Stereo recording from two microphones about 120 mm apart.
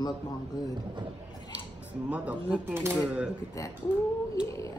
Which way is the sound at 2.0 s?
10° right (ahead or behind).